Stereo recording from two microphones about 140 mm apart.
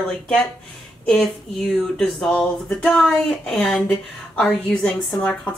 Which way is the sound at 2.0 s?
5° left (ahead or behind).